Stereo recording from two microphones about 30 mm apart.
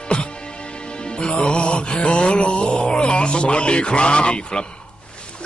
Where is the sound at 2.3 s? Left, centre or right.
Left.